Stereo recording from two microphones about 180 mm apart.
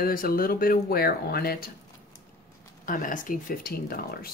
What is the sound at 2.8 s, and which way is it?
Speech, 50° left (ahead or behind).